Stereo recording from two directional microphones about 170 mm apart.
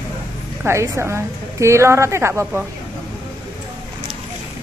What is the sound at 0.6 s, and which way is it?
A woman's voice, 15° right (ahead or behind).